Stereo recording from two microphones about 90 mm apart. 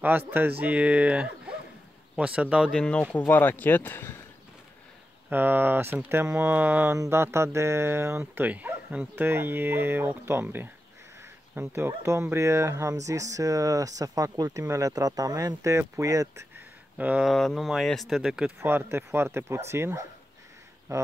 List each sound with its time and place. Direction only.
0.3 s speech: 20° right (ahead or behind)
2.7 s speech: 10° left (ahead or behind)
5.3 s speech: 20° right (ahead or behind)
8.5 s speech: 15° right (ahead or behind); by 16.4 s 40° right (ahead or behind)
17.2 s speech: 5° left (ahead or behind)
18.6 s speech: 25° right (ahead or behind)